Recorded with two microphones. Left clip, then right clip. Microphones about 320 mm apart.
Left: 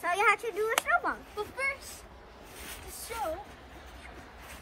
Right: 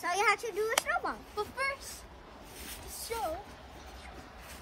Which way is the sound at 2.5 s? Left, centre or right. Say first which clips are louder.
Left 2 dB; centre.